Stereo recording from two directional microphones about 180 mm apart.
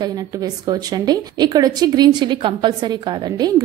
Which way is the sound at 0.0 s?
20° right (ahead or behind).